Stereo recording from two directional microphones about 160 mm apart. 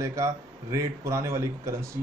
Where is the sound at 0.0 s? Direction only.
20° right (ahead or behind).